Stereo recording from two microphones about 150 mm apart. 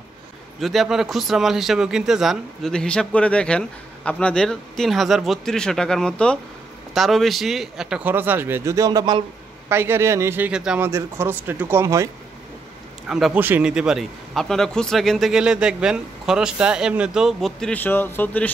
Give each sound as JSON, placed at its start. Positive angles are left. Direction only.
{"t": 0.6, "sound": "a man's voice", "side_deg": 0}
{"t": 9.7, "sound": "speech", "side_deg": -15}
{"t": 10.9, "sound": "speech", "side_deg": -15}
{"t": 13.1, "sound": "a man's voice", "side_deg": -5}